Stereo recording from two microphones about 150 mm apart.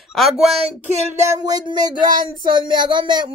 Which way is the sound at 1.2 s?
25° right (ahead or behind).